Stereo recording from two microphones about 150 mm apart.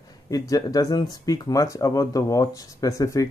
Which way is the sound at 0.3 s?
25° left (ahead or behind).